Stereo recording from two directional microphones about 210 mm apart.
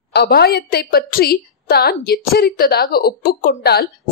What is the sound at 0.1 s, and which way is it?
Speech, 50° left (ahead or behind).